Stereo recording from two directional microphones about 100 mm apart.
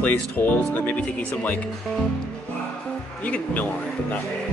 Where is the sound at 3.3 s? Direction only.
15° left (ahead or behind).